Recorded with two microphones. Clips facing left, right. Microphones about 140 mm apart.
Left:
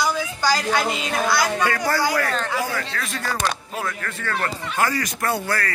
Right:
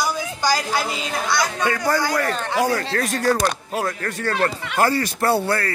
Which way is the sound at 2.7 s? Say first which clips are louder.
Right 6 dB; 40° right (ahead or behind).